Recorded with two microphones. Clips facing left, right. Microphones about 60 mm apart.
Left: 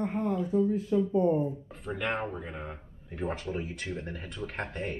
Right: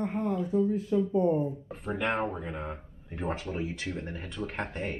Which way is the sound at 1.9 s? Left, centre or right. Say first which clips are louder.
Right 2 dB; centre.